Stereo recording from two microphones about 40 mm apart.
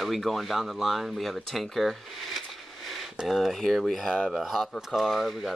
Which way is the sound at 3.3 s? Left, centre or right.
Centre.